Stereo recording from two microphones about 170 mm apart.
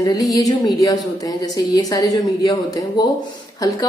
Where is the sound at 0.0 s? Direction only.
20° left (ahead or behind).